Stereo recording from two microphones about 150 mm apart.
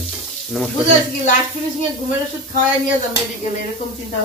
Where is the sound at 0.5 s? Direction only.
5° left (ahead or behind).